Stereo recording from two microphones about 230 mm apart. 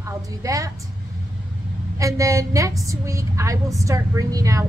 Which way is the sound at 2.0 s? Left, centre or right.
Centre.